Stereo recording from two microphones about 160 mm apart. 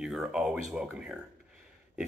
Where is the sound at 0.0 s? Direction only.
5° right (ahead or behind).